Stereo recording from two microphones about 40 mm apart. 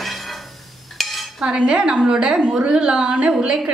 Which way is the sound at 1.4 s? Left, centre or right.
Centre.